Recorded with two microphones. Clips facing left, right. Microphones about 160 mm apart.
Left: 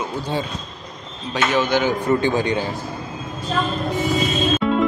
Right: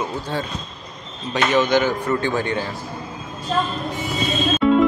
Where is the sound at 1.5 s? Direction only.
10° left (ahead or behind).